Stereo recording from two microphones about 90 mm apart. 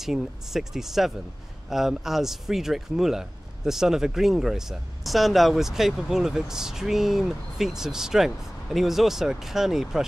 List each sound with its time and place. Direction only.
0.0 s speech: 5° right (ahead or behind)